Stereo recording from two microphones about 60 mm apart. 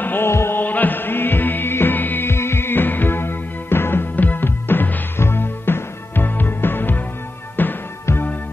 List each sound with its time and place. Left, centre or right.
0.0 s heart sounds: left
0.3 s heart sounds: left
0.6 s music: left